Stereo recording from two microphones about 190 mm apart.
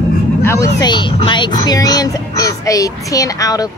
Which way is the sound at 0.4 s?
15° left (ahead or behind).